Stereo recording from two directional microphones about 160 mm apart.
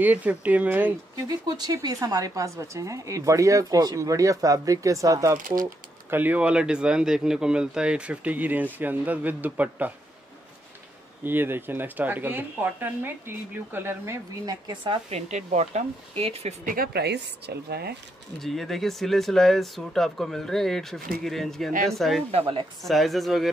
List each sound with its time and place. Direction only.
0.0 s speech: 10° right (ahead or behind)
1.4 s speech: 25° right (ahead or behind)
11.2 s speech: 15° right (ahead or behind); by 15.0 s 30° right (ahead or behind)
15.0 s speech: 45° right (ahead or behind)
16.6 s speech: 65° right (ahead or behind); by 17.9 s 85° right
18.4 s speech: centre (ahead or behind)
22.3 s speech: 35° right (ahead or behind)
22.8 s speech: centre (ahead or behind)